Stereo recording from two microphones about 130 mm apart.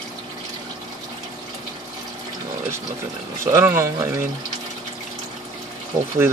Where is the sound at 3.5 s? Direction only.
20° right (ahead or behind).